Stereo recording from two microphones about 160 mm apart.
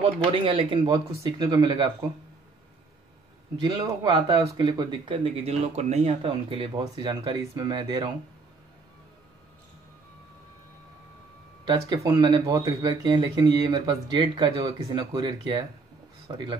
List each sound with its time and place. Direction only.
0.0 s speech: 35° right (ahead or behind)
3.6 s speech: 25° right (ahead or behind)
11.6 s speech: 30° right (ahead or behind)